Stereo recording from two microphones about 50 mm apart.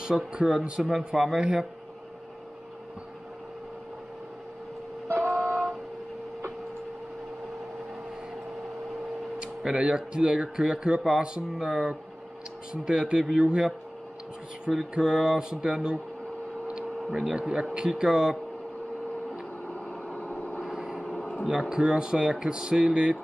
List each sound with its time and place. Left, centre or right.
0.0 s speech: centre
0.9 s speech: centre
1.4 s speech: centre
5.1 s a sound: right
9.4 s speech: centre
14.7 s speech: centre
16.6 s a sound: right
17.1 s speech: centre
19.6 s vehicle: left
20.6 s vehicle: centre
21.5 s speech: centre